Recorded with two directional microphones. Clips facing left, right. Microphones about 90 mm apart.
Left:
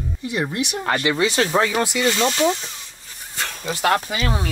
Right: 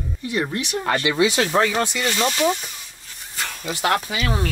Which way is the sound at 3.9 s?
35° left (ahead or behind).